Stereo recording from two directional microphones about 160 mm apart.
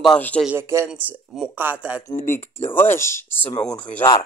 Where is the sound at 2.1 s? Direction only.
55° left (ahead or behind).